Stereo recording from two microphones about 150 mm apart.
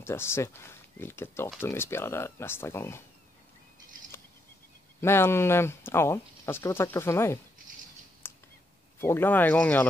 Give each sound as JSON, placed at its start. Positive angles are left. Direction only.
{"t": 0.0, "sound": "speech", "side_deg": 15}
{"t": 5.0, "sound": "speech", "side_deg": 15}
{"t": 8.2, "sound": "a sound", "side_deg": 15}
{"t": 9.0, "sound": "speech", "side_deg": 15}